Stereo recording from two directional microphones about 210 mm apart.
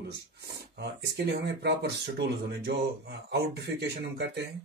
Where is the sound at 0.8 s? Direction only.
55° right (ahead or behind).